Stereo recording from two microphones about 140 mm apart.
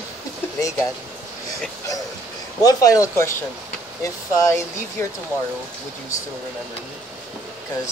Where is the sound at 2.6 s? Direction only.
25° left (ahead or behind).